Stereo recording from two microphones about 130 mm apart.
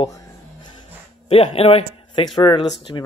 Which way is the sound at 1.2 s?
45° left (ahead or behind).